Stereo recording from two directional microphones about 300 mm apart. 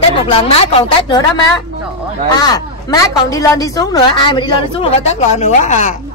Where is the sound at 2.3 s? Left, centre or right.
Centre.